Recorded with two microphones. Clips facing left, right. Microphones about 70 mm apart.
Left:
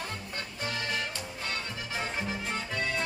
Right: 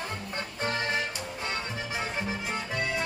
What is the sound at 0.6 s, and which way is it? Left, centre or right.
Music, right.